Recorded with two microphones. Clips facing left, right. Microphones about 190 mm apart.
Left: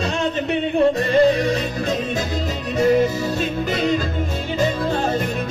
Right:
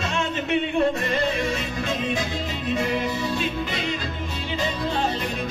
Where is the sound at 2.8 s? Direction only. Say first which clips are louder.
Left 11 dB; 40° left (ahead or behind).